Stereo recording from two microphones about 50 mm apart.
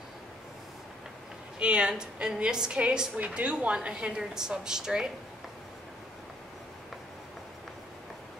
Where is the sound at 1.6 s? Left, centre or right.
Centre.